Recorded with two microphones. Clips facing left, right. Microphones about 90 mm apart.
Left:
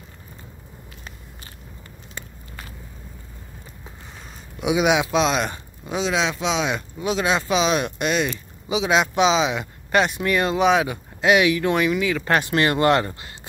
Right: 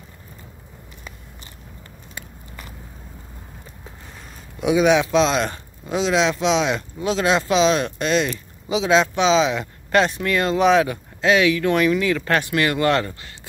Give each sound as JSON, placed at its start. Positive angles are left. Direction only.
{"t": 4.6, "sound": "speech", "side_deg": 10}
{"t": 12.3, "sound": "speech", "side_deg": 25}